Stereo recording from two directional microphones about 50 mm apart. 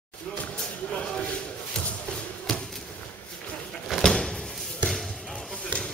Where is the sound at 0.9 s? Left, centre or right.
Centre.